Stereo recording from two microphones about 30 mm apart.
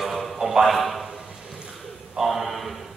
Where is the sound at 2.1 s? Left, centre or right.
Centre.